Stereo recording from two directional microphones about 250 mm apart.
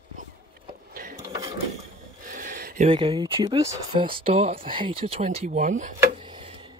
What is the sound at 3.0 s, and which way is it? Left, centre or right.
Speech, centre.